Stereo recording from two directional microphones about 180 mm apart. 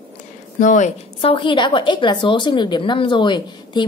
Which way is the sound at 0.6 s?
45° left (ahead or behind).